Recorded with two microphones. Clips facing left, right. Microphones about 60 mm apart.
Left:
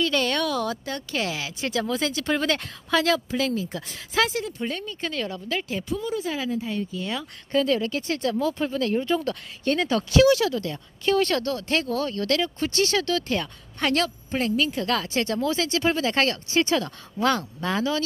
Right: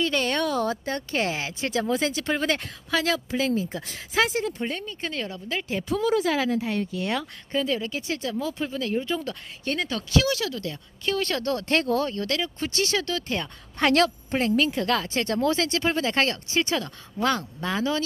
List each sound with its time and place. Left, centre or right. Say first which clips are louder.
0.0 s a woman's voice: left 1 dB; right
3.3 s a woman's voice: right 1 dB; right
5.7 s speech: right 1 dB; right
5.9 s speech: right 7 dB; right
6.6 s speech: right 2 dB; right
7.5 s speech: left 4 dB; centre
8.9 s a woman's voice: left 2 dB; centre
9.2 s speech: left 5 dB; centre
9.8 s speech: left 5 dB; centre
10.2 s speech: left 8 dB; left
10.5 s a woman's voice: left 4 dB; centre
11.4 s speech: right 2 dB; right
12.3 s speech: left 4 dB; centre
13.7 s a woman's voice: right 3 dB; right